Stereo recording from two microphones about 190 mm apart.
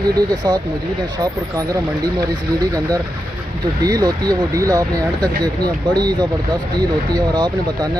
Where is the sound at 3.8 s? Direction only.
20° right (ahead or behind).